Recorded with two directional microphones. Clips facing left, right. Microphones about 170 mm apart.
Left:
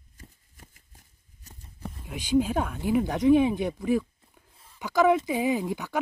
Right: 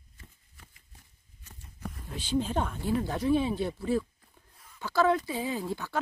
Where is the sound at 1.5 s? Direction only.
30° left (ahead or behind).